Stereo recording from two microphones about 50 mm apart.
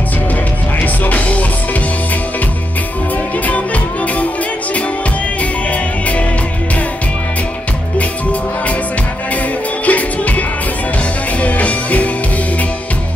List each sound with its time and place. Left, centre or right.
1.0 s music: left
9.8 s music: left
11.4 s music: left